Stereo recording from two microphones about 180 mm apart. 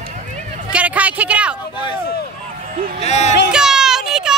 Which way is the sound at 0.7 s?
10° right (ahead or behind).